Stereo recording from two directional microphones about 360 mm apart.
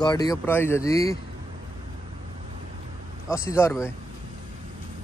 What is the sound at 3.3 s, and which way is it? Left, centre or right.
Speech, centre.